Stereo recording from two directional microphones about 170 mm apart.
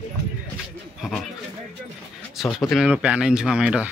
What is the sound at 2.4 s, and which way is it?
Speech, centre (ahead or behind).